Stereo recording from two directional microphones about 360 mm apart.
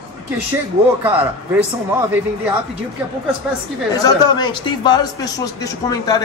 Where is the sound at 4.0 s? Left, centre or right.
Centre.